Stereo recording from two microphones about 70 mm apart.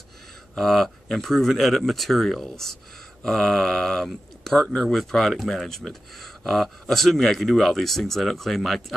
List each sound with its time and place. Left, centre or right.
0.6 s speech: centre